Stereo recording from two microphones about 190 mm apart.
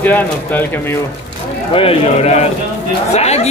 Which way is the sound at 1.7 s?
30° left (ahead or behind).